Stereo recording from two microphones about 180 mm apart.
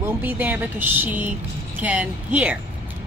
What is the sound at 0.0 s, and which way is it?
Speech, 10° right (ahead or behind).